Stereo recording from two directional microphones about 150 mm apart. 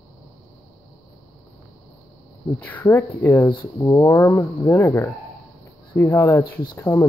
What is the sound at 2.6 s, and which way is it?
Speech, 15° left (ahead or behind).